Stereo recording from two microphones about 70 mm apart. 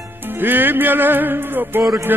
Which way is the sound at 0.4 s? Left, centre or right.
Right.